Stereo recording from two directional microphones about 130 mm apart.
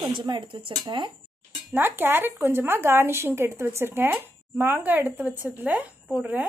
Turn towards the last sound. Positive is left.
turn(degrees=-15)  # may be behind; listen again after turning